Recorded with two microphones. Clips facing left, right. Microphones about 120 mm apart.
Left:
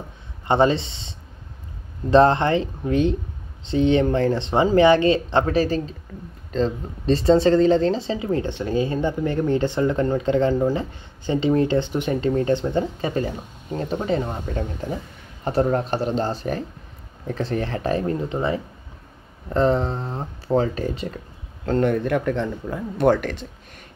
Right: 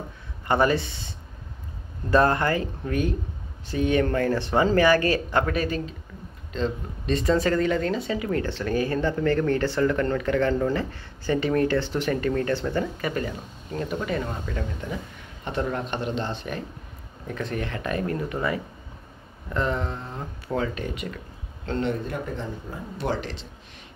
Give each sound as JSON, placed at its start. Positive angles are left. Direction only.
{"t": 0.5, "sound": "speech", "side_deg": 25}
{"t": 21.6, "sound": "speech", "side_deg": 50}